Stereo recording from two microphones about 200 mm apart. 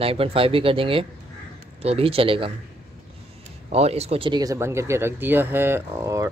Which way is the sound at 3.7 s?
30° right (ahead or behind).